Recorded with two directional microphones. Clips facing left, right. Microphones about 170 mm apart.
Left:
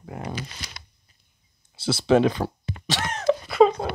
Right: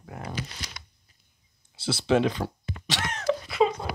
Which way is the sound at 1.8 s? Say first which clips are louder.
Left 4 dB; 45° left (ahead or behind).